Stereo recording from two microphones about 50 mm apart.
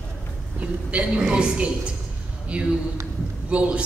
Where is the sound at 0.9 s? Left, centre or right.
Centre.